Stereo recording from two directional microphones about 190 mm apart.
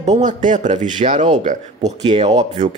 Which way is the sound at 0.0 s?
40° right (ahead or behind).